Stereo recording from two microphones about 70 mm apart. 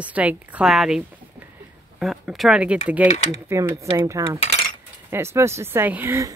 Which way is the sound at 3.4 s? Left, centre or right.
Right.